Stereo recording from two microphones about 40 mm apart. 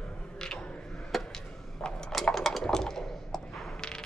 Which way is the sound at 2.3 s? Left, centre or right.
Centre.